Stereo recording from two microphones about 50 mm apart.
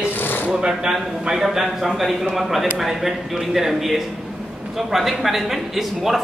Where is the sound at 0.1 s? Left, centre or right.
Left.